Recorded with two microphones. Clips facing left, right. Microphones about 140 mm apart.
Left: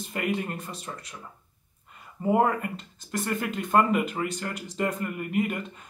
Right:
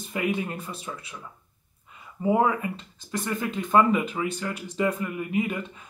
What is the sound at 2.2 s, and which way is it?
Speech, 10° right (ahead or behind).